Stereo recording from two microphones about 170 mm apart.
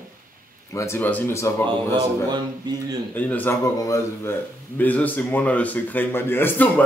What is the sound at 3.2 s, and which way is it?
A man's voice, 10° left (ahead or behind).